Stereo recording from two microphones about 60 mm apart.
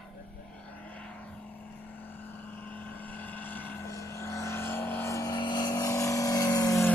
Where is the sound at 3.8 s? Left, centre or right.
Left.